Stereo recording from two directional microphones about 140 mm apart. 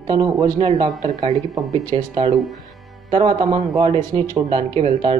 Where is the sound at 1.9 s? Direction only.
40° right (ahead or behind).